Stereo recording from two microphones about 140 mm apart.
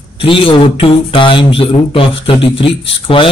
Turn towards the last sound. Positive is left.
turn(degrees=40)  # may be behind; listen again after turning